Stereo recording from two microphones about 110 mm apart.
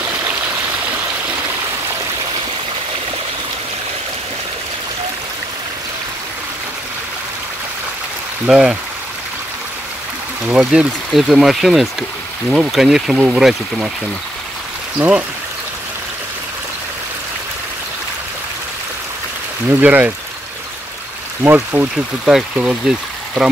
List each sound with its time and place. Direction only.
8.5 s speech: 10° right (ahead or behind)
10.4 s speech: 10° right (ahead or behind)
15.0 s speech: 10° right (ahead or behind)
19.7 s speech: 15° right (ahead or behind)
21.4 s speech: 20° right (ahead or behind)